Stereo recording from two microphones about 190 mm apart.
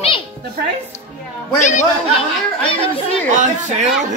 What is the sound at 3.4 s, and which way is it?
Speech, 40° right (ahead or behind).